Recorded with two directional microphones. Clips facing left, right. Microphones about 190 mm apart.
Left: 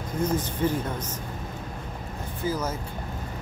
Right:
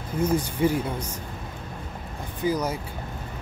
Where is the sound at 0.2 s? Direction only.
10° right (ahead or behind).